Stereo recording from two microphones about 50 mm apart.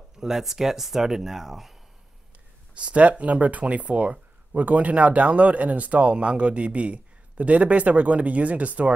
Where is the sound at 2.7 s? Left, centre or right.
Right.